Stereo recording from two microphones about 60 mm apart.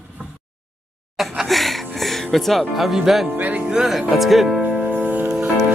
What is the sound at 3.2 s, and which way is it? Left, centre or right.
Music, right.